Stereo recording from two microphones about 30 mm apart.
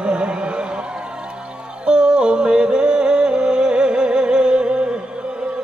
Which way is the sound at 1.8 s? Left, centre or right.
Right.